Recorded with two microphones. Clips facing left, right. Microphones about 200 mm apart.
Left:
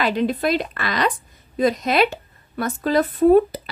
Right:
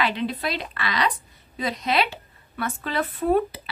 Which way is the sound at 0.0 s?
45° left (ahead or behind).